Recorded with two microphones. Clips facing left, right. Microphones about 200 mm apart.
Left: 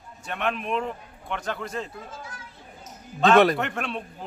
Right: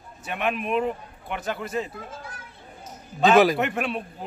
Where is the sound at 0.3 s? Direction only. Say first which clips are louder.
Right 2 dB; 10° right (ahead or behind).